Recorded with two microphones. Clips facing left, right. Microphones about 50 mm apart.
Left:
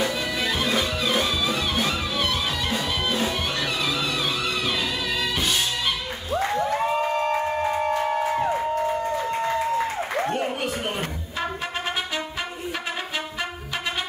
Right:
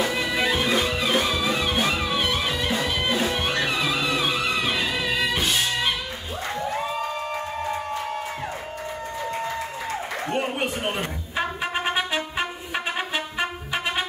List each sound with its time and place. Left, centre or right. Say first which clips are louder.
0.1 s music: right 2 dB; right
10.3 s music: even; right